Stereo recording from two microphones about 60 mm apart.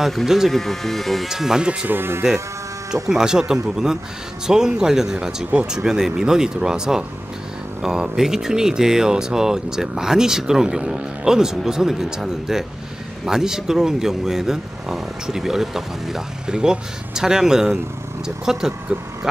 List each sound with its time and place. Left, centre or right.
0.0 s speech: centre
1.9 s speech: right
2.9 s speech: centre